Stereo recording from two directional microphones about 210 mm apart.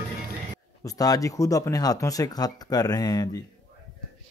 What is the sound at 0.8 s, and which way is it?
Speech, 15° left (ahead or behind).